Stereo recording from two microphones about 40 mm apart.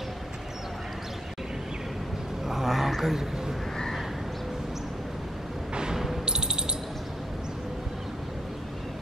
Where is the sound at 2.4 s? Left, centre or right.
Centre.